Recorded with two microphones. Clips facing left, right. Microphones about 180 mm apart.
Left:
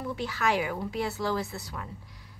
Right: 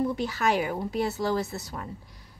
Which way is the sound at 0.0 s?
40° right (ahead or behind).